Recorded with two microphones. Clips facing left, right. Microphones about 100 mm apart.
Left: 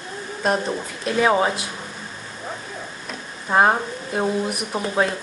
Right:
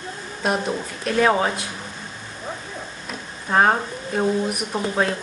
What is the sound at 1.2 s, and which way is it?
Speech, 15° left (ahead or behind).